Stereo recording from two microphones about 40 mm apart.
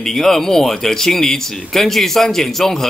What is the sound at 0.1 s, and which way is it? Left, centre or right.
Speech, centre.